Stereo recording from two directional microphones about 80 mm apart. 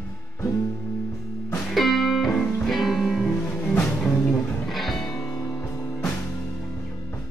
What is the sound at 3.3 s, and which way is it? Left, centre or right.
Music, left.